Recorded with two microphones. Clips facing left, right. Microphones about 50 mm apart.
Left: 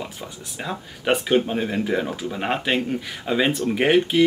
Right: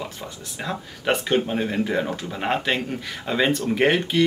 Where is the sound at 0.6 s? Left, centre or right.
Centre.